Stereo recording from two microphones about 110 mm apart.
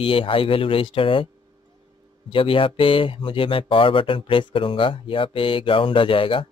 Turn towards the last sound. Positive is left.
turn(degrees=55)  # may be behind; listen again after turning